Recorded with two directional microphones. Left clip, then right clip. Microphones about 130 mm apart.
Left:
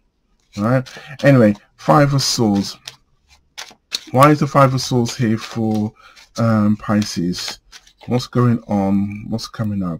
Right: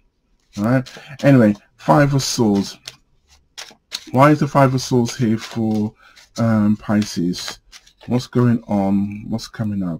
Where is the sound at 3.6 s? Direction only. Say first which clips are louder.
Left 4 dB; 10° left (ahead or behind).